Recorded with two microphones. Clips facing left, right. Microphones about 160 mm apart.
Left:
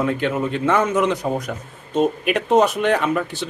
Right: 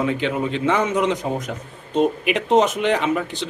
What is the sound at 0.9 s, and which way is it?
Speech, 20° right (ahead or behind).